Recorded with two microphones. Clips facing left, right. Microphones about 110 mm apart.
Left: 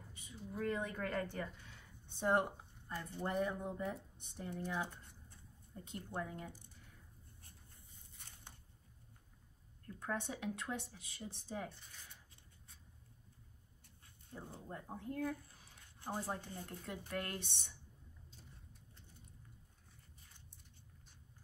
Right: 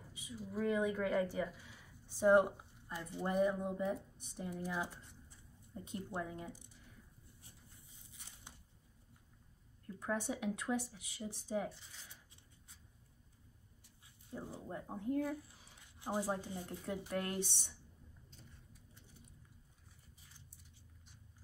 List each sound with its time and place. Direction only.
0.4 s speech: 5° right (ahead or behind)
1.3 s a sound: 5° right (ahead or behind)
2.2 s speech: 10° right (ahead or behind)
9.9 s speech: 10° right (ahead or behind)
14.0 s speech: 10° right (ahead or behind)